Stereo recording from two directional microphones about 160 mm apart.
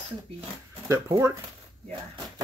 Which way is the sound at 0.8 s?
20° right (ahead or behind).